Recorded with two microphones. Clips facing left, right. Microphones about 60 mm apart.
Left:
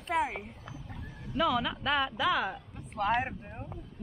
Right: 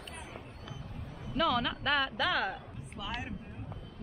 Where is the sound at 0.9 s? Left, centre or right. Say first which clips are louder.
Left 1 dB; left.